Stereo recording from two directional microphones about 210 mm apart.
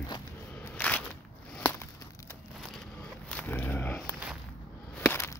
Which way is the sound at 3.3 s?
10° left (ahead or behind).